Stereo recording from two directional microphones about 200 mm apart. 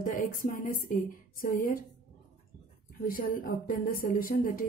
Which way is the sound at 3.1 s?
45° left (ahead or behind).